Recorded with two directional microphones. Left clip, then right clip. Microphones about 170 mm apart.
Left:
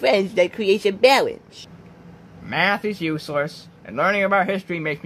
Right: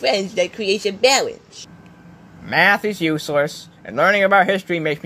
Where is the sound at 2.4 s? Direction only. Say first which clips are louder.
Right 5 dB; 25° right (ahead or behind).